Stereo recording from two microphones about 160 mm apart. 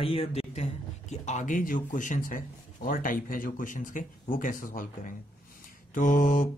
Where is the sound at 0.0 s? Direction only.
40° left (ahead or behind).